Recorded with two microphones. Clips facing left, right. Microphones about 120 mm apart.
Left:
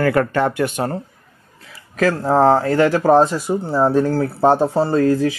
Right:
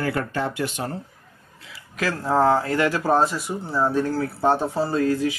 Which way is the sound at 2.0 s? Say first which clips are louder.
Left 6 dB; 40° left (ahead or behind).